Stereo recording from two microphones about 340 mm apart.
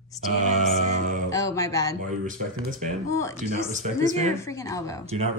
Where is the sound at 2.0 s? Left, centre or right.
Right.